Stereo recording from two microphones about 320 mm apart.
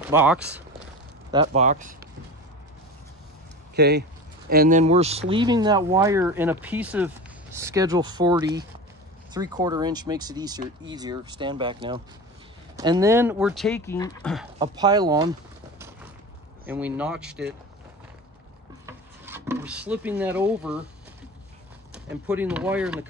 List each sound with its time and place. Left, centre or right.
0.0 s speech: centre
1.3 s speech: centre
3.7 s speech: right; by 14.3 s centre
14.6 s speech: centre
16.6 s speech: centre
18.9 s wood: centre
22.1 s speech: centre